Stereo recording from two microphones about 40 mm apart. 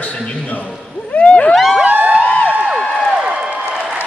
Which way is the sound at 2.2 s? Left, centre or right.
Left.